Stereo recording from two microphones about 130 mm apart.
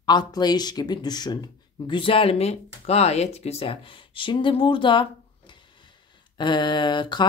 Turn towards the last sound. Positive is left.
turn(degrees=35)  # may be behind; listen again after turning